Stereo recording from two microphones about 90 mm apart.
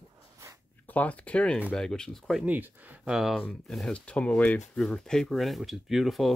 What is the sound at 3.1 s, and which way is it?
Speech, 5° right (ahead or behind).